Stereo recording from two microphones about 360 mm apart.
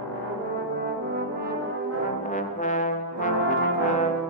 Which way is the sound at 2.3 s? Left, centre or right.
Centre.